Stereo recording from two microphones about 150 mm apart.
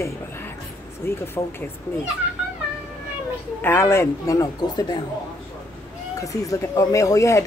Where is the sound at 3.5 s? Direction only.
15° left (ahead or behind).